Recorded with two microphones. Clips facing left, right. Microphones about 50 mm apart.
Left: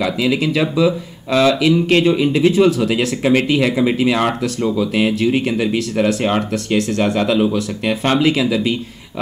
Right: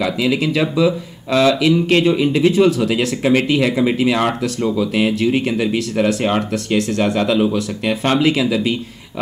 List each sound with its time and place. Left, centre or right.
0.0 s speech: centre